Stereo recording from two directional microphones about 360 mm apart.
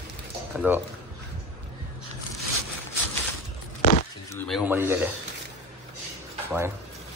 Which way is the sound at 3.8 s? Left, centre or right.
Left.